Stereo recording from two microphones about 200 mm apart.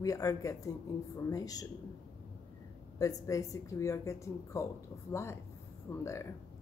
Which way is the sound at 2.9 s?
15° left (ahead or behind).